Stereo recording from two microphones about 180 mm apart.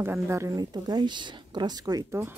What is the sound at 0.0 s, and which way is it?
A woman's voice, 15° right (ahead or behind).